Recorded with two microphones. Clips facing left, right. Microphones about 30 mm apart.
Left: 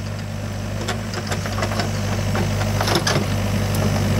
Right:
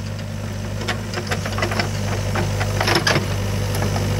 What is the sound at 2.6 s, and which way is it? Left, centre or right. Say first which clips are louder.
Wood: even; centre.